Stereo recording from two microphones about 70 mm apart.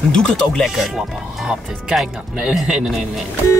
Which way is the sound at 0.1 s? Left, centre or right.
Centre.